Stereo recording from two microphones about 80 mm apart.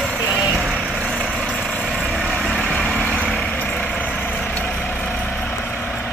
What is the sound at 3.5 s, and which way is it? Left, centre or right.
Vehicle, centre.